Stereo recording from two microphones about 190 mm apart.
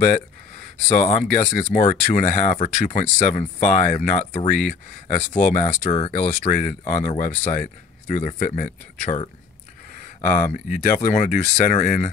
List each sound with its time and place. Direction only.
0.8 s speech: 40° left (ahead or behind)